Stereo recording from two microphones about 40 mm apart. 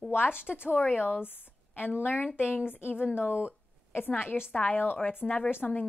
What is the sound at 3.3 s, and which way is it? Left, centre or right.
Speech, right.